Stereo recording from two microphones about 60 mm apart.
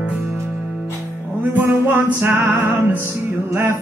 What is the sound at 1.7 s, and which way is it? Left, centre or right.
Music, right.